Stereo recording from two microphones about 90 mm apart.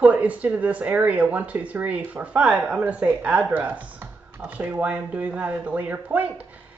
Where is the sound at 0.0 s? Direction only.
15° right (ahead or behind).